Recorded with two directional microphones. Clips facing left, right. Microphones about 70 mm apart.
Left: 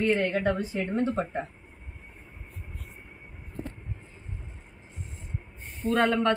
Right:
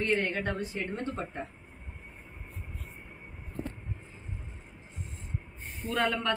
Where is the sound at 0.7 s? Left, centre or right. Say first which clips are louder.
Left 7 dB; left.